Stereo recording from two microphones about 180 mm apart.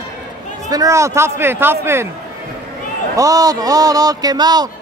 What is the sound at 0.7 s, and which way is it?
A man's voice, 20° right (ahead or behind).